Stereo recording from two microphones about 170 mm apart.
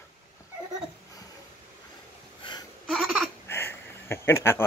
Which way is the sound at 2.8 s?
Centre (ahead or behind).